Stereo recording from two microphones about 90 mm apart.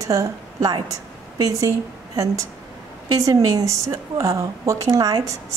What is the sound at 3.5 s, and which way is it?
A woman's voice, 35° right (ahead or behind).